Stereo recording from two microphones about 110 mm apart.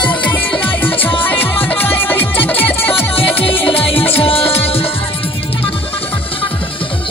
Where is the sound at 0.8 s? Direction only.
15° left (ahead or behind).